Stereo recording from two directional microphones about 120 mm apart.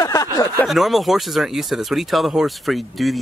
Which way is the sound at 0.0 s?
30° left (ahead or behind).